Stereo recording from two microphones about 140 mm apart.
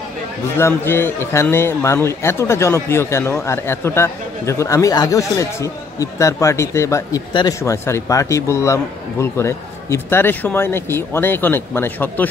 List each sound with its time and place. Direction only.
0.6 s a man's voice: 15° left (ahead or behind)